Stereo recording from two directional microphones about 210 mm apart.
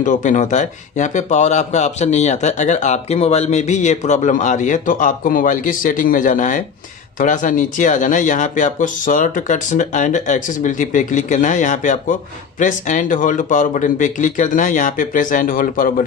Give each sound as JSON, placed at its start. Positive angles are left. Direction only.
{"t": 0.0, "sound": "speech", "side_deg": 35}